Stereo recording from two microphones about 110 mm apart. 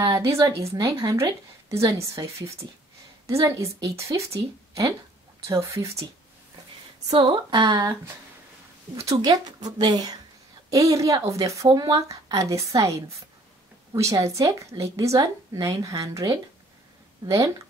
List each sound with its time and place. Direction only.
0.0 s a woman's voice: 30° right (ahead or behind)
7.1 s speech: 45° right (ahead or behind)
9.0 s a woman's voice: 35° right (ahead or behind)